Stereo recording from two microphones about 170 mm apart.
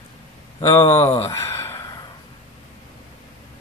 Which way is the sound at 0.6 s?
20° left (ahead or behind).